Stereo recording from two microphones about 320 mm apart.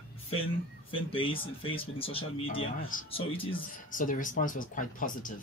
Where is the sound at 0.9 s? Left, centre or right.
Centre.